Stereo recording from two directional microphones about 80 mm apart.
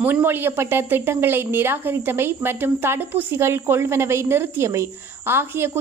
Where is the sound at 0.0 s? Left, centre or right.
Right.